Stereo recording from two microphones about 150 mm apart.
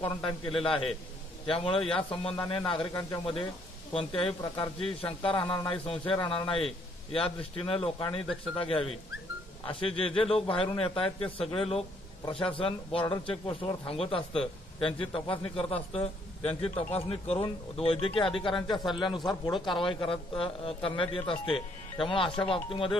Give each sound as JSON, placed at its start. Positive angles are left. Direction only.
{"t": 0.0, "sound": "a man's voice", "side_deg": 35}
{"t": 2.9, "sound": "speech", "side_deg": 20}
{"t": 3.9, "sound": "a man's voice", "side_deg": 35}